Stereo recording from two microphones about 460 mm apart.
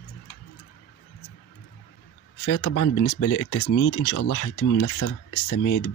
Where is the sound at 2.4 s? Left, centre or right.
Left.